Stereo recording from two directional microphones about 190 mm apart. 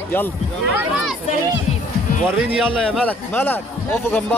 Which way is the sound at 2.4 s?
5° right (ahead or behind).